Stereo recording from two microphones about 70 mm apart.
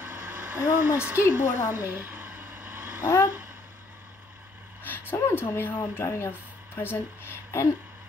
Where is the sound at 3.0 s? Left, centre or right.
Left.